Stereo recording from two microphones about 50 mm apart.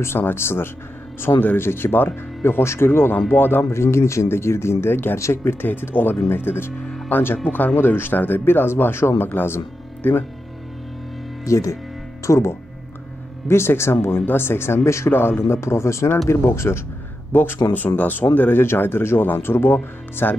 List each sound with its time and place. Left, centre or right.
0.2 s speech: left
1.3 s speech: left
1.6 s speech: left
2.6 s speech: left
3.7 s speech: left
7.4 s speech: left
7.7 s speech: left
11.4 s speech: left
12.3 s speech: left
13.5 s speech: left
17.3 s speech: left